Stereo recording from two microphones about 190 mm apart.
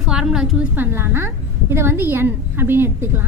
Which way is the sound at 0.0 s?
5° right (ahead or behind).